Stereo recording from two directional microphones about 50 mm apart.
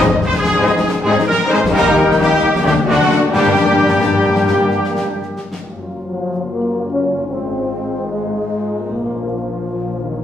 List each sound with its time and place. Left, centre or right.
0.4 s music: centre